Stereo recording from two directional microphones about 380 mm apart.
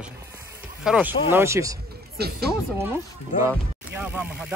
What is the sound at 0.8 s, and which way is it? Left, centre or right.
Speech, centre.